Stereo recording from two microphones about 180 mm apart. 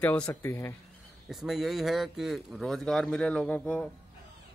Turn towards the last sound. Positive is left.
turn(degrees=5)  # may be behind; listen again after turning